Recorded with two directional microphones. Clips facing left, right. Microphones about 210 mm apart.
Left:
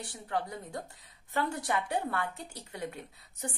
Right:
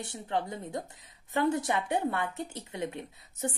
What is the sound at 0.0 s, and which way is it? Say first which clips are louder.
A woman's voice: right 2 dB; 25° right (ahead or behind).